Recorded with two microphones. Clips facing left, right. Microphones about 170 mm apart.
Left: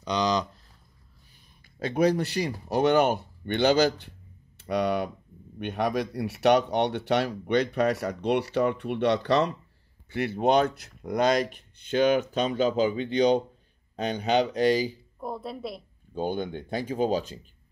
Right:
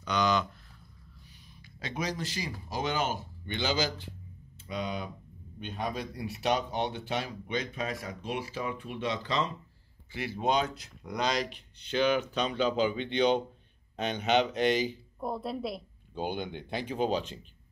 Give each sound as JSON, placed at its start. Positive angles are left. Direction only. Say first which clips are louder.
{"t": 0.0, "sound": "speech", "louder": "left 2 dB", "side_deg": 35}
{"t": 1.8, "sound": "speech", "louder": "left 11 dB", "side_deg": 55}
{"t": 15.1, "sound": "a woman's voice", "louder": "right 3 dB", "side_deg": 0}
{"t": 16.2, "sound": "speech", "louder": "left 5 dB", "side_deg": 45}